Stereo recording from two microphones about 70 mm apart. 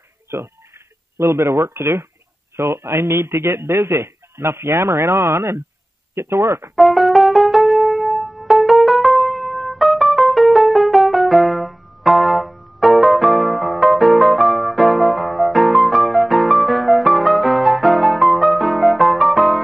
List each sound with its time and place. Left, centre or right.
0.3 s speech: right
6.7 s keyboard: centre